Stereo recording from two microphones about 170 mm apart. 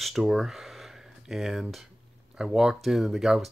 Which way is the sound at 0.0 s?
Centre (ahead or behind).